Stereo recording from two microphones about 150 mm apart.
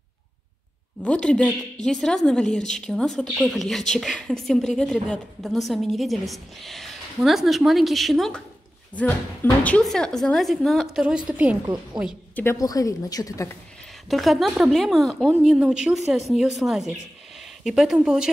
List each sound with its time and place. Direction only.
1.0 s a woman's voice: 5° left (ahead or behind)
11.6 s a woman's voice: 25° right (ahead or behind)
12.4 s a woman's voice: 20° left (ahead or behind)
14.0 s a woman's voice: centre (ahead or behind)